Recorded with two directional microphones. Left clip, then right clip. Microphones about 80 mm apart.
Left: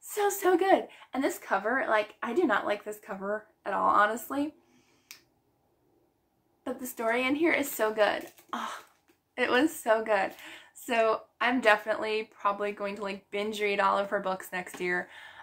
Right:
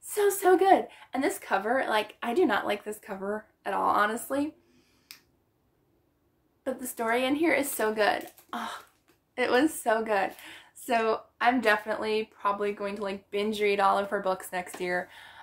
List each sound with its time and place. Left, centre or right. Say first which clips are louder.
0.1 s a woman's voice: right 3 dB; right
1.4 s speech: right 1 dB; right
6.6 s a woman's voice: right 1 dB; right